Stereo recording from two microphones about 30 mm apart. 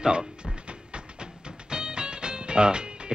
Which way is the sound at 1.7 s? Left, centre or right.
Right.